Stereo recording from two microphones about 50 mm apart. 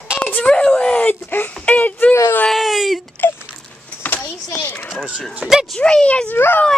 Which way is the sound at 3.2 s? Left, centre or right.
Left.